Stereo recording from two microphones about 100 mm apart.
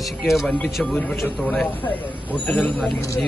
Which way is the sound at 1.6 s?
15° left (ahead or behind).